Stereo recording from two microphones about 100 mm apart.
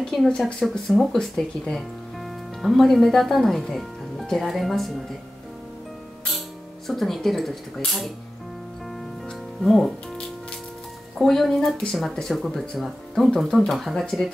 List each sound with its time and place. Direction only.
0.0 s speech: 5° left (ahead or behind)
6.9 s speech: centre (ahead or behind)
9.6 s speech: centre (ahead or behind)
11.1 s speech: 5° left (ahead or behind)